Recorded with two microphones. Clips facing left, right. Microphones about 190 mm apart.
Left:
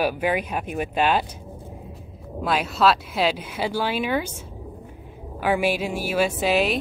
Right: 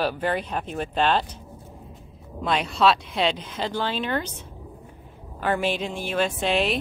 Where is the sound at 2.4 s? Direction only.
5° left (ahead or behind).